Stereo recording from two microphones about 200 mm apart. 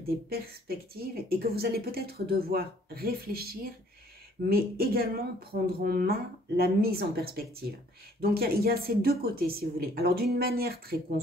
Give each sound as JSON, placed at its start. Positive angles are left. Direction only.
{"t": 0.0, "sound": "speech", "side_deg": -50}